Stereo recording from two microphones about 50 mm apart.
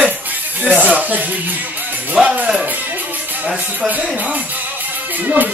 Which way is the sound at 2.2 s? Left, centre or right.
Right.